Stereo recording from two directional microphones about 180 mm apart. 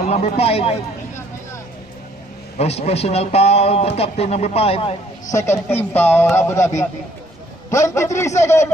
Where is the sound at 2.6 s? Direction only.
35° left (ahead or behind).